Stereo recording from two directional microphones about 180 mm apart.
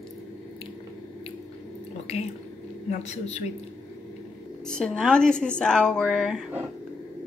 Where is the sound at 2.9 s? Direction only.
40° left (ahead or behind).